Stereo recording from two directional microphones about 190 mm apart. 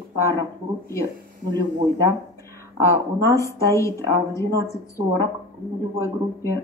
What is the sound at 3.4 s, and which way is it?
A woman's voice, 15° left (ahead or behind).